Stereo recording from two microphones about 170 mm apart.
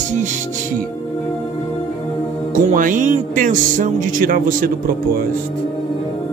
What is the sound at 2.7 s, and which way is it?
Speech, 50° right (ahead or behind).